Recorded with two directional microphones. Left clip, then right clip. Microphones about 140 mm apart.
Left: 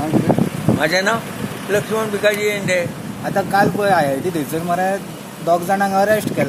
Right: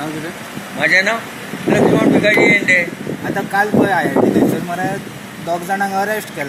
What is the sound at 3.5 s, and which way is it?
Speech, 85° left.